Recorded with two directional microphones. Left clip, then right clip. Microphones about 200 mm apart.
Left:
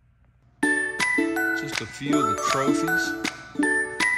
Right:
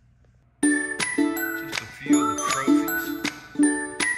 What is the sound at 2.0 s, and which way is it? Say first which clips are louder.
Music: right 1 dB; 20° left (ahead or behind).